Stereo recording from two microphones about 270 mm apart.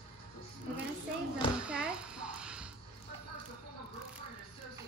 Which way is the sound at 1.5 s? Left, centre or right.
Centre.